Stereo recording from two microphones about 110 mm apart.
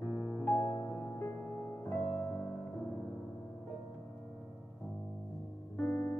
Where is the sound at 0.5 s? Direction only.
40° left (ahead or behind).